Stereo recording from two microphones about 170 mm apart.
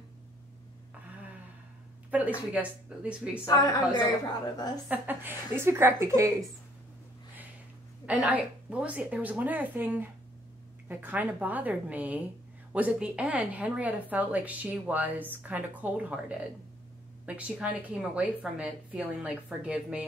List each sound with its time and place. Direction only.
2.0 s a sound: 10° right (ahead or behind)
2.5 s a woman's voice: 5° right (ahead or behind)
3.4 s a woman's voice: 25° left (ahead or behind)
4.8 s a woman's voice: 10° right (ahead or behind)
8.1 s a woman's voice: 10° right (ahead or behind)